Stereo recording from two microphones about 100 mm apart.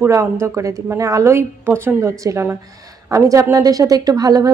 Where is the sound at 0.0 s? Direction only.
30° right (ahead or behind).